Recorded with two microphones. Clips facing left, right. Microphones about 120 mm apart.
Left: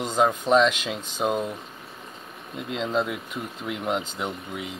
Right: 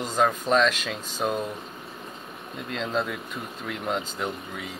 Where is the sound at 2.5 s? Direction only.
15° left (ahead or behind).